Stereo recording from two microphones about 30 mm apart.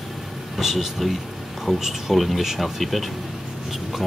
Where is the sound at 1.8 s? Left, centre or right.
Centre.